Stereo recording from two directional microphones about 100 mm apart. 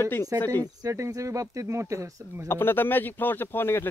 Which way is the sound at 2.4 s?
25° left (ahead or behind).